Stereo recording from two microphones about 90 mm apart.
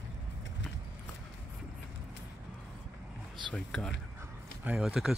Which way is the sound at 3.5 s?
5° left (ahead or behind).